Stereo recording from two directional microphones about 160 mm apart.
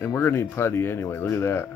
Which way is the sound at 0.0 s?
15° left (ahead or behind).